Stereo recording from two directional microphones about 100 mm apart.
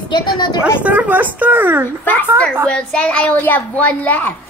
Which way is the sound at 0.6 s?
15° right (ahead or behind).